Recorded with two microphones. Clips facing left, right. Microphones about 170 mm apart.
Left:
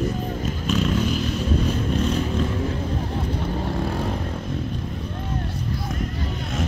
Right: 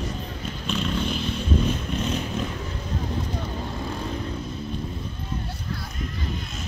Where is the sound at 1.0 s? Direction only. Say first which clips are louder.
Left 4 dB; 40° left (ahead or behind).